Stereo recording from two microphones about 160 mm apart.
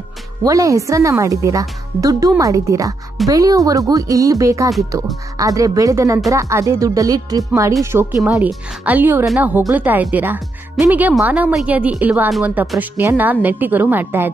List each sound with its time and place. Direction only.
0.4 s speech: 20° right (ahead or behind)
8.2 s speech: centre (ahead or behind)